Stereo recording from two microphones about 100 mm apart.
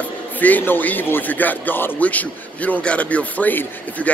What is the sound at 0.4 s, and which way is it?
A man's voice, 15° left (ahead or behind).